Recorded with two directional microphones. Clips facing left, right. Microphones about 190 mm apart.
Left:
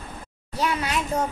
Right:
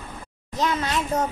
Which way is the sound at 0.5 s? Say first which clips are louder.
Right 1 dB; 10° left (ahead or behind).